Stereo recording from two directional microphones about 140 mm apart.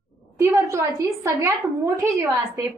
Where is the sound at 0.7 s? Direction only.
20° right (ahead or behind).